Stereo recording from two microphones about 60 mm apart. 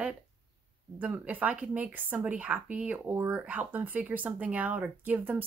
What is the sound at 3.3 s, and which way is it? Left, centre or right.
A woman's voice, right.